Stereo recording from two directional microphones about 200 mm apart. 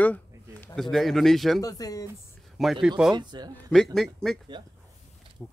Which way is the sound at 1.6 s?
20° left (ahead or behind).